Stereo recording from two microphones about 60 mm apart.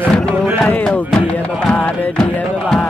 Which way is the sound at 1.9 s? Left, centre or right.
Left.